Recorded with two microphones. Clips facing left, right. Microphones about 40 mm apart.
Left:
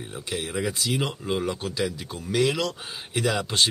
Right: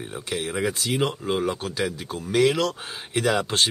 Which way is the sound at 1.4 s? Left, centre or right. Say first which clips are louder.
Right 2 dB; right.